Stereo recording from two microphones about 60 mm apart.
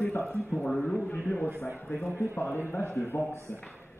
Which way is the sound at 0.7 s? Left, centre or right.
Centre.